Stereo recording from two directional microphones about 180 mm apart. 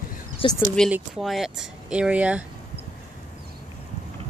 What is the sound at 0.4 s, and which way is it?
Speech, 30° left (ahead or behind).